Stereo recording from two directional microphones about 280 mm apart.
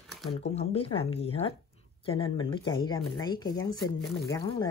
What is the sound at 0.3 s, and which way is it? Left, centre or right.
Speech, left.